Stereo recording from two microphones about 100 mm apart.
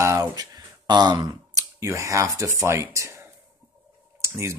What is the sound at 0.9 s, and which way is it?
Speech, 45° right (ahead or behind).